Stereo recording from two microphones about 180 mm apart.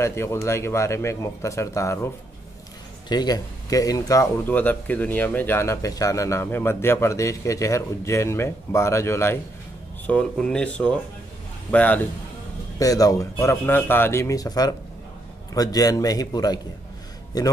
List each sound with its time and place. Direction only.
0.0 s speech: 15° left (ahead or behind)
3.1 s speech: 20° left (ahead or behind)
12.7 s speech: 20° left (ahead or behind)